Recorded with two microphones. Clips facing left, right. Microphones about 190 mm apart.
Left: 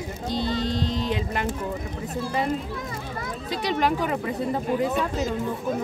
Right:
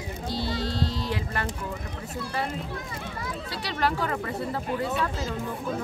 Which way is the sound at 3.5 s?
20° left (ahead or behind).